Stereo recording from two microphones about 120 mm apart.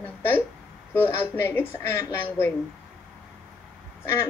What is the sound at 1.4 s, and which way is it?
A woman's voice, 20° left (ahead or behind).